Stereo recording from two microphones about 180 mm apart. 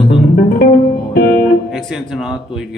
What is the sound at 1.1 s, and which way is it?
Music, 50° left (ahead or behind).